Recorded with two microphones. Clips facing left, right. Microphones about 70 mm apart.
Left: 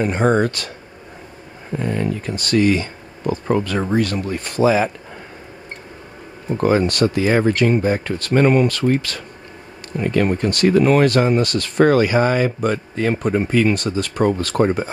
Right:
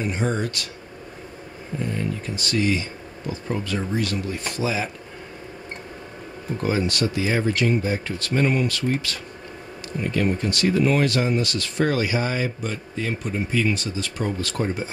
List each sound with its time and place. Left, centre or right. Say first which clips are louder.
0.0 s speech: left 8 dB; left
1.8 s speech: left 6 dB; left
6.6 s speech: left 7 dB; left
9.9 s speech: left 5 dB; left